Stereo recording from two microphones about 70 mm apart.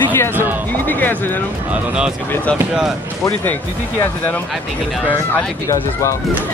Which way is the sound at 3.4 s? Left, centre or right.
Left.